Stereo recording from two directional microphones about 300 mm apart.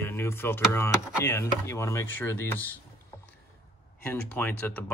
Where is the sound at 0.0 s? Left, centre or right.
Centre.